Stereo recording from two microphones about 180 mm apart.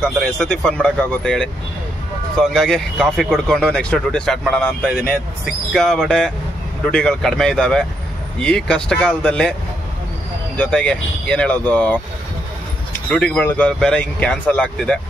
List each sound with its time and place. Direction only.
0.0 s speech: 5° left (ahead or behind)
13.1 s speech: 5° left (ahead or behind)